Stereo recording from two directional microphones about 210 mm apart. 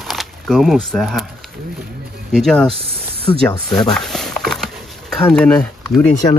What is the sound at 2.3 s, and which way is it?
Speech, centre (ahead or behind).